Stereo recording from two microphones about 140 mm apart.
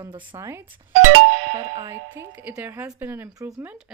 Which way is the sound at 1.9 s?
15° right (ahead or behind).